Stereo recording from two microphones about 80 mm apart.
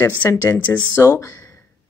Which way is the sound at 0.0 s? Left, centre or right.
Left.